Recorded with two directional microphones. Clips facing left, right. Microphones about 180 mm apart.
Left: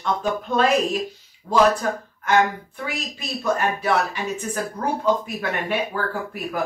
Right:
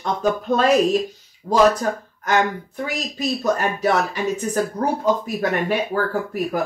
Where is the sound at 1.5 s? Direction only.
25° right (ahead or behind).